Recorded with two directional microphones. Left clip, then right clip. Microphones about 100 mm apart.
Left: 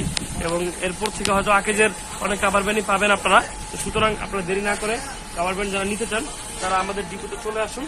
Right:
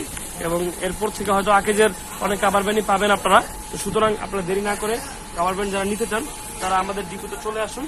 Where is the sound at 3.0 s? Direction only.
55° right (ahead or behind).